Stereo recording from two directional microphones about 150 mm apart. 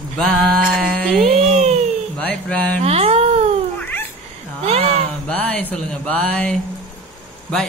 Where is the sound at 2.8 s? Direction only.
40° right (ahead or behind).